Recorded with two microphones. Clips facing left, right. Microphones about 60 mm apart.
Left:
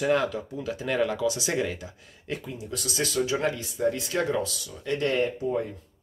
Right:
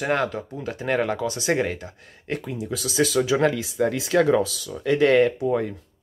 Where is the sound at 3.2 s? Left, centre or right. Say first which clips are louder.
Right 4 dB; right.